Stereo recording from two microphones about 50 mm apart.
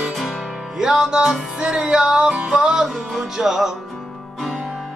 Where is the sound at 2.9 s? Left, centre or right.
Centre.